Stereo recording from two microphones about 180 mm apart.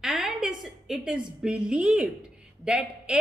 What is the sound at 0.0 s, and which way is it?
A woman's voice, 5° right (ahead or behind).